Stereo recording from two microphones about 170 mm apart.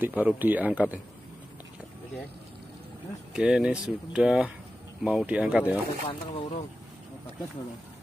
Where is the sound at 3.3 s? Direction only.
5° right (ahead or behind).